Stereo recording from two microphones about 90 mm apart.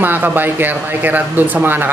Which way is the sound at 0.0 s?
20° right (ahead or behind).